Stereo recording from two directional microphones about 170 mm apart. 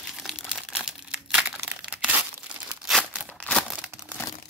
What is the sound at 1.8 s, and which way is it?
Crumpling, 5° right (ahead or behind).